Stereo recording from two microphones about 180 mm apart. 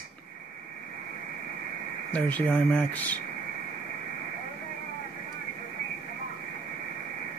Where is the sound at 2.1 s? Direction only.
10° left (ahead or behind).